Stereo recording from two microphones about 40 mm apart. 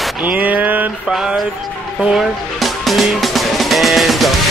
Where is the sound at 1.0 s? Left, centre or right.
Centre.